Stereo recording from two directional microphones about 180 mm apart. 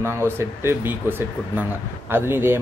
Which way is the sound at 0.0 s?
15° right (ahead or behind).